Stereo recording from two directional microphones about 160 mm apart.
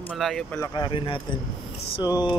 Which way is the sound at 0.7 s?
30° left (ahead or behind).